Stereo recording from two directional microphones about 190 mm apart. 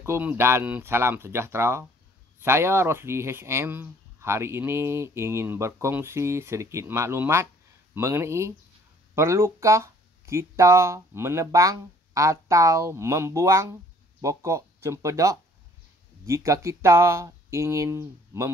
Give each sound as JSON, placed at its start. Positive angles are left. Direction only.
{"t": 0.0, "sound": "speech", "side_deg": -10}